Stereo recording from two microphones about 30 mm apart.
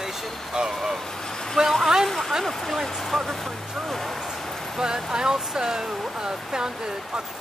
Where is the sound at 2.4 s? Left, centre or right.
Centre.